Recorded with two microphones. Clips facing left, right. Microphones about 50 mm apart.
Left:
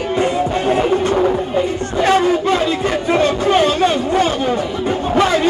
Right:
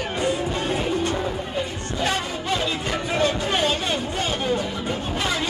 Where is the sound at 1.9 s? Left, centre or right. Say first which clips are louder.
Left 12 dB; left.